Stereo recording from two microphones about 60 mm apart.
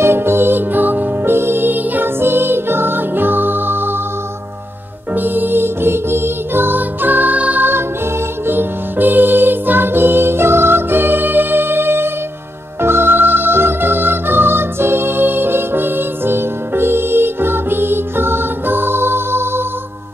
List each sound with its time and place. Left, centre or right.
0.0 s music: right
5.1 s music: right